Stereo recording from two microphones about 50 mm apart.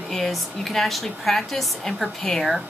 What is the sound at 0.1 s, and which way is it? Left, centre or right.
Speech, centre.